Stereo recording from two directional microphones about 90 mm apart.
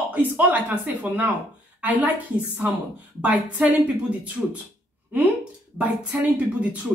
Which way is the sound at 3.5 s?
15° right (ahead or behind).